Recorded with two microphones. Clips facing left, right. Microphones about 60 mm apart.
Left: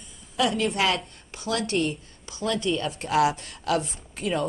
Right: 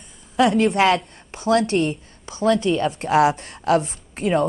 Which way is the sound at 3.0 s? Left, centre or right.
Right.